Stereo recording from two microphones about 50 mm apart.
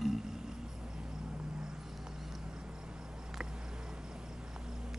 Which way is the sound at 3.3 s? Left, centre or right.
Centre.